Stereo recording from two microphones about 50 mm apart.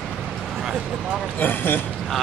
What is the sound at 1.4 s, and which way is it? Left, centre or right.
Speech, left.